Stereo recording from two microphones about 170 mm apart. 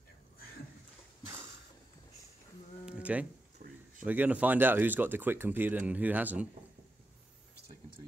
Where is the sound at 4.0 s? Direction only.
10° right (ahead or behind).